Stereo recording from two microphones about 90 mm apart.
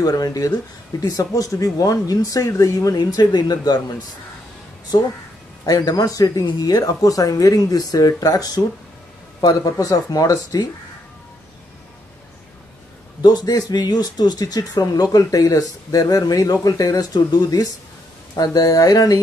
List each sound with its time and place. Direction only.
0.0 s speech: 45° left (ahead or behind)
5.7 s speech: 45° left (ahead or behind)
13.2 s speech: 45° left (ahead or behind)